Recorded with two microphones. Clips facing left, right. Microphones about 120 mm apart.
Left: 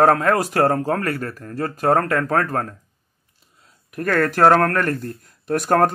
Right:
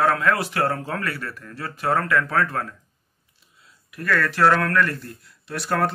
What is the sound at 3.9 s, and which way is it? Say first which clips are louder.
Speech: left 4 dB; 45° left (ahead or behind).